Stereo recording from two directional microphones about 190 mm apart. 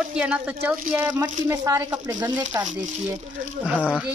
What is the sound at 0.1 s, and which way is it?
A woman's voice, 5° right (ahead or behind).